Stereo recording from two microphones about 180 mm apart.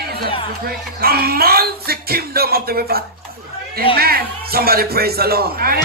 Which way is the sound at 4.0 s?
55° right (ahead or behind).